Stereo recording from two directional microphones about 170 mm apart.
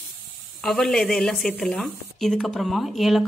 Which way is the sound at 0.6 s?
5° left (ahead or behind).